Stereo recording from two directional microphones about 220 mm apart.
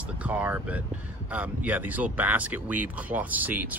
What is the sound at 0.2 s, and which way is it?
Speech, 5° right (ahead or behind).